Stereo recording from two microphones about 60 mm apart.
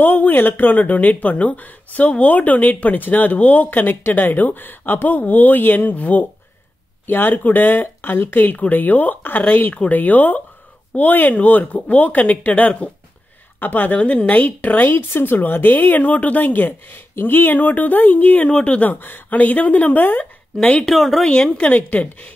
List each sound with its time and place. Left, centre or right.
0.0 s speech: left
20.8 s speech: centre
21.3 s speech: centre